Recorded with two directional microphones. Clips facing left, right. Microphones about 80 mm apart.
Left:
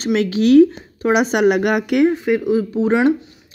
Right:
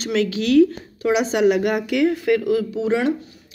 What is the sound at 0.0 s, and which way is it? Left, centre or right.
Speech, left.